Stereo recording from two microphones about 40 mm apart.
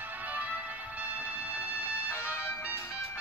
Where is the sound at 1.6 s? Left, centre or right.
Left.